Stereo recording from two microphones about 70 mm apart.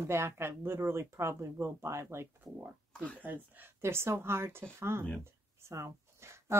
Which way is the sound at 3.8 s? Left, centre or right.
Right.